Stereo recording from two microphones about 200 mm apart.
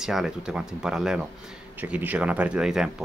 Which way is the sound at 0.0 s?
Centre (ahead or behind).